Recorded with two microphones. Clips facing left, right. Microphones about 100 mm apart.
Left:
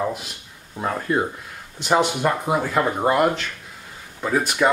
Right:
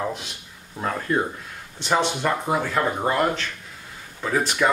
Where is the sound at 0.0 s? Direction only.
5° left (ahead or behind).